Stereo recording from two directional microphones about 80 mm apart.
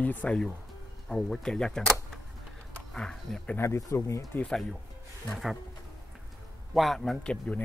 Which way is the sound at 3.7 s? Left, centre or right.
Left.